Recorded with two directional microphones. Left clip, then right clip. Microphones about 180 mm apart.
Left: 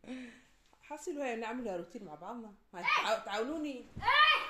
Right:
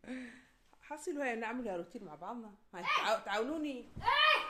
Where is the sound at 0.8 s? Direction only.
5° left (ahead or behind).